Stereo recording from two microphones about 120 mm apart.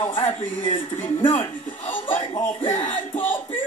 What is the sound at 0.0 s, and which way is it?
Speech, 55° left (ahead or behind).